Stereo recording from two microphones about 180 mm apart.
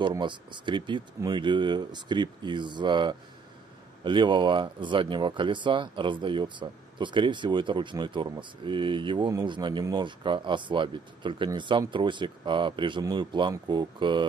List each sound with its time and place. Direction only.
0.0 s speech: 25° right (ahead or behind)